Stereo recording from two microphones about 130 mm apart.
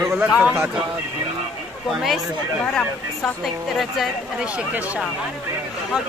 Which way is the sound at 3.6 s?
Centre (ahead or behind).